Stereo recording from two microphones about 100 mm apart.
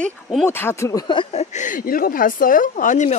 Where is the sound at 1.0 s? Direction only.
55° left (ahead or behind).